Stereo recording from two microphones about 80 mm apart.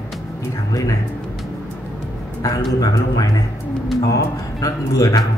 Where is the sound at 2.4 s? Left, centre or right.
Left.